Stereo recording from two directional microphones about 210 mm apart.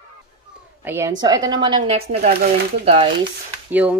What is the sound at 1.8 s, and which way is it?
A woman's voice, 35° right (ahead or behind).